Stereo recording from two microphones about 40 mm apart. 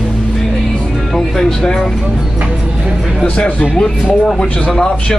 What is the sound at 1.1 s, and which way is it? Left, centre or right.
Music, centre.